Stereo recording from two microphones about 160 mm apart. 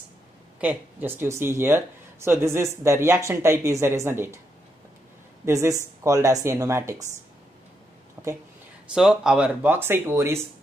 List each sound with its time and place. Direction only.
0.6 s speech: 10° right (ahead or behind)
5.4 s speech: 20° right (ahead or behind)
8.2 s a sound: 15° right (ahead or behind)
8.9 s speech: 5° right (ahead or behind)